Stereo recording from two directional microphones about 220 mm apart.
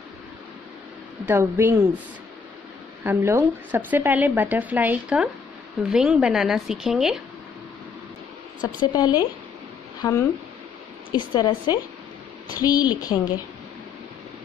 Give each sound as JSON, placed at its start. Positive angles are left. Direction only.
{"t": 1.2, "sound": "speech", "side_deg": -10}
{"t": 3.0, "sound": "a woman's voice", "side_deg": -10}
{"t": 8.8, "sound": "a woman's voice", "side_deg": 15}